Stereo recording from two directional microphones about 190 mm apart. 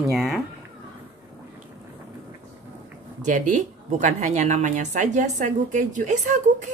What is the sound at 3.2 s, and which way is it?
A woman's voice, 40° right (ahead or behind).